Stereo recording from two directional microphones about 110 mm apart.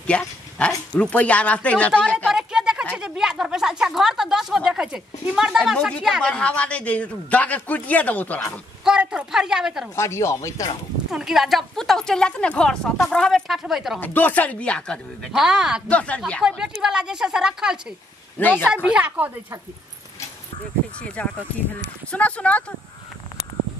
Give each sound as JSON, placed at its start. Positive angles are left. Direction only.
{"t": 0.0, "sound": "speech", "side_deg": 10}
{"t": 2.2, "sound": "a sound", "side_deg": -5}
{"t": 4.6, "sound": "speech", "side_deg": -5}
{"t": 5.6, "sound": "a man's voice", "side_deg": 5}
{"t": 8.8, "sound": "speech", "side_deg": -5}
{"t": 9.9, "sound": "speech", "side_deg": 25}
{"t": 11.1, "sound": "speech", "side_deg": -5}
{"t": 13.9, "sound": "a man's voice", "side_deg": 15}
{"t": 15.3, "sound": "speech", "side_deg": -5}
{"t": 15.9, "sound": "a man's voice", "side_deg": 10}
{"t": 16.4, "sound": "a woman's voice", "side_deg": -5}
{"t": 18.4, "sound": "a man's voice", "side_deg": 15}
{"t": 18.9, "sound": "a woman's voice", "side_deg": -10}
{"t": 21.1, "sound": "a man's voice", "side_deg": 10}